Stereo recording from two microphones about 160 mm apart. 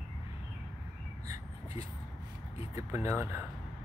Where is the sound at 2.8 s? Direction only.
15° right (ahead or behind).